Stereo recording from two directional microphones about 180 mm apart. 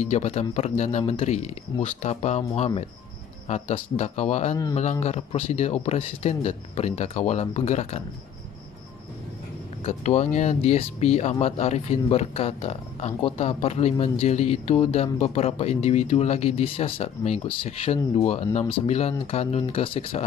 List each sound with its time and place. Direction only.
0.0 s speech: 40° left (ahead or behind)
9.8 s speech: 40° left (ahead or behind)